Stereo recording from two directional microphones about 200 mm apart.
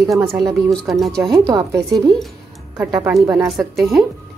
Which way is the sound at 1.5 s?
15° right (ahead or behind).